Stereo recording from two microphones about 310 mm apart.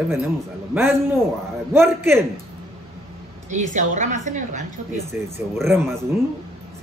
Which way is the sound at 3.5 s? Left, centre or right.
Right.